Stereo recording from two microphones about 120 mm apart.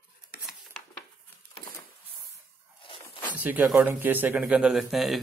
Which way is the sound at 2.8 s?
45° left (ahead or behind).